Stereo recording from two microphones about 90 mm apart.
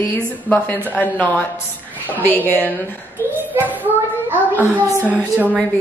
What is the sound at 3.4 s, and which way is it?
Child singing, 20° right (ahead or behind).